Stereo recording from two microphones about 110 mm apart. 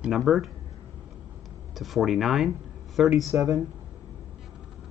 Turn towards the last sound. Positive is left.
turn(degrees=-30)  # may be behind; listen again after turning